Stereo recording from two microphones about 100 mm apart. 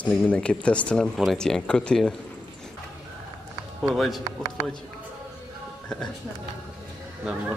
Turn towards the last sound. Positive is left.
turn(degrees=-10)  # may be behind; listen again after turning